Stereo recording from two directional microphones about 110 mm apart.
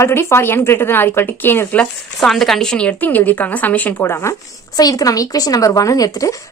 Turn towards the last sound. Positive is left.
turn(degrees=30)  # may be behind; listen again after turning